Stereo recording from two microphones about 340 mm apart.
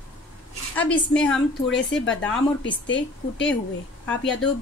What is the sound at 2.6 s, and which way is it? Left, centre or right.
Speech, left.